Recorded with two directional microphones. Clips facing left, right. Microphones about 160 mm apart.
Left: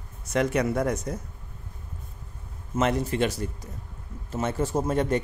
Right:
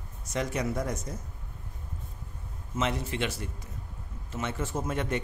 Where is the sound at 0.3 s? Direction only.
65° left (ahead or behind).